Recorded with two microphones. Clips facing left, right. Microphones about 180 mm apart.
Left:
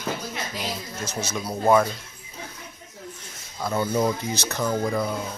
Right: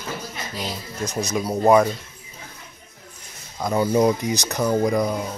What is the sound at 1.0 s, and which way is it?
Speech, 35° right (ahead or behind).